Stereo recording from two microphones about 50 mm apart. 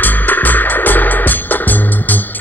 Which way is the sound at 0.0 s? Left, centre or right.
Left.